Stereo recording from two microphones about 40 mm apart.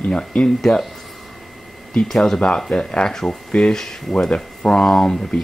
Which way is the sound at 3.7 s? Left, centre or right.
Centre.